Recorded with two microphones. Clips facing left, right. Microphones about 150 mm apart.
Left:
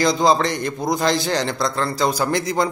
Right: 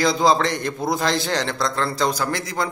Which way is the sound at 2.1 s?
20° left (ahead or behind).